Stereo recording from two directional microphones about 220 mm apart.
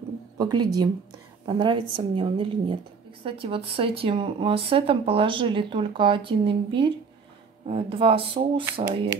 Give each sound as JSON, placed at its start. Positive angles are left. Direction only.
{"t": 0.4, "sound": "speech", "side_deg": -20}